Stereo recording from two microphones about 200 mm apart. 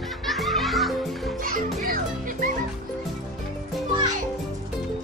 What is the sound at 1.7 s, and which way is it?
Music, 40° right (ahead or behind).